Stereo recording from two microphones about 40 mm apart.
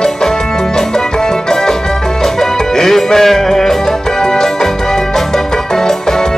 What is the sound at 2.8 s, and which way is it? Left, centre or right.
Music, centre.